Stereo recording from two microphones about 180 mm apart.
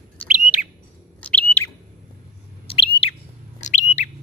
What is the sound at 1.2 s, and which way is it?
Chirp, 10° left (ahead or behind).